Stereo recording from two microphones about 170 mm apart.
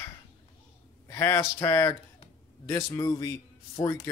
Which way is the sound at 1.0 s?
20° left (ahead or behind).